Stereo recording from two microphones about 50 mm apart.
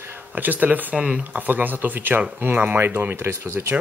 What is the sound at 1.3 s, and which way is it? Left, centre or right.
Speech, right.